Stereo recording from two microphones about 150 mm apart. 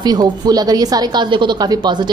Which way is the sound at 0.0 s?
25° right (ahead or behind).